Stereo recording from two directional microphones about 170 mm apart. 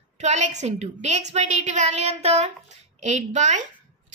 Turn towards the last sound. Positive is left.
turn(degrees=-45)  # may be behind; listen again after turning